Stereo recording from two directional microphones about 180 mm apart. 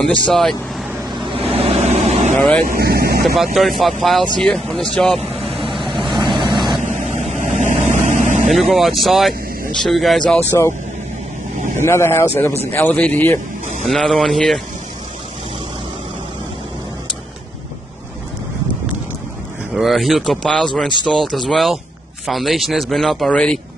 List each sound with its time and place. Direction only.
0.3 s a man's voice: centre (ahead or behind)
1.5 s vehicle: 35° right (ahead or behind)
2.3 s speech: 10° left (ahead or behind)
2.6 s speech: 55° right (ahead or behind)
3.5 s a man's voice: centre (ahead or behind)
4.4 s vehicle: 5° left (ahead or behind)
6.3 s vehicle: 25° right (ahead or behind)
6.8 s vehicle: 40° right (ahead or behind)
8.5 s a man's voice: centre (ahead or behind)
11.8 s a man's voice: 15° left (ahead or behind)
19.7 s a man's voice: centre (ahead or behind)